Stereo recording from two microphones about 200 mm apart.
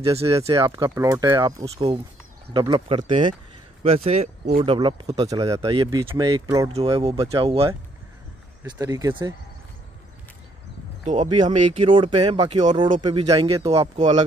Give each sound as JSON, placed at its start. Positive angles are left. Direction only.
{"t": 0.0, "sound": "speech", "side_deg": -30}
{"t": 0.5, "sound": "speech", "side_deg": -20}
{"t": 6.7, "sound": "speech", "side_deg": -30}
{"t": 11.3, "sound": "speech", "side_deg": -25}